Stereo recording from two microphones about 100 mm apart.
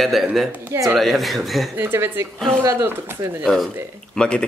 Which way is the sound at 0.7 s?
35° right (ahead or behind).